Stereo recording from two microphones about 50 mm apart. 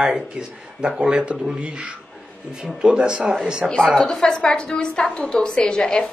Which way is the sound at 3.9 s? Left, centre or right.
Centre.